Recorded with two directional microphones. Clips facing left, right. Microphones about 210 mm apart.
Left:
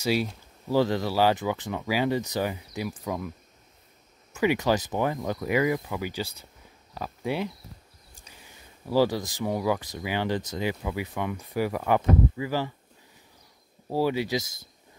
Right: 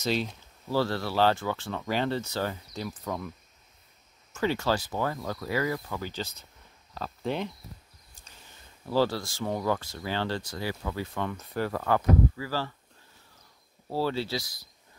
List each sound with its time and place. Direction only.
0.0 s speech: 10° left (ahead or behind)
13.8 s speech: 15° left (ahead or behind)